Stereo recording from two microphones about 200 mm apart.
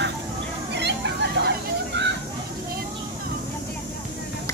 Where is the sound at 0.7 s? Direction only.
60° right (ahead or behind).